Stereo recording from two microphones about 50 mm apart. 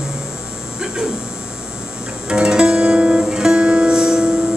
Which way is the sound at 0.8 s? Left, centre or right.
Centre.